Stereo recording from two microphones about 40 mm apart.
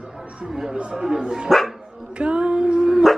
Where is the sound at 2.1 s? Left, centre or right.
Right.